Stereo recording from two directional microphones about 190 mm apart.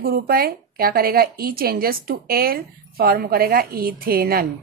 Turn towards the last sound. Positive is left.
turn(degrees=-50)  # may be behind; listen again after turning